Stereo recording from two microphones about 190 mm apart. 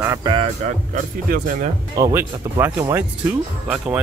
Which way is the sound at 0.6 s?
45° right (ahead or behind).